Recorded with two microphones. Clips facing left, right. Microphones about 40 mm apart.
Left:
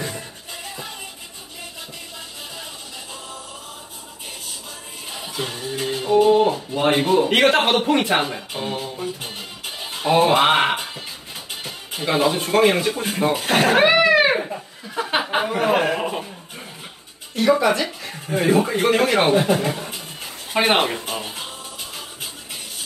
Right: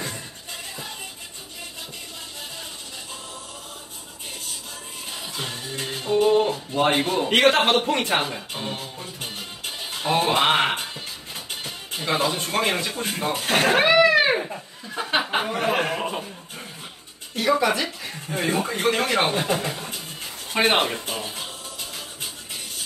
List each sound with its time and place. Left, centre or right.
5.1 s speech: centre
9.2 s music: centre
17.4 s a man's voice: centre
20.9 s music: centre